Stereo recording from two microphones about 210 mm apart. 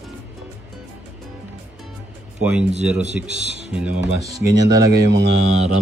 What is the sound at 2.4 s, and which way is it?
Speech, 5° right (ahead or behind).